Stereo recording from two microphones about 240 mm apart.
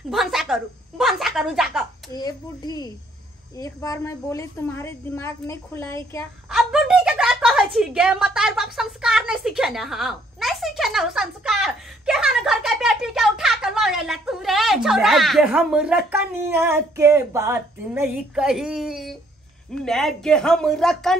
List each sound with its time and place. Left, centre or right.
0.1 s a sound: centre
2.1 s a woman's voice: centre
6.5 s a woman's voice: centre